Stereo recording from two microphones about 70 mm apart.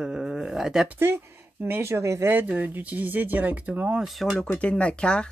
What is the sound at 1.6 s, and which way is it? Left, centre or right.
Speech, right.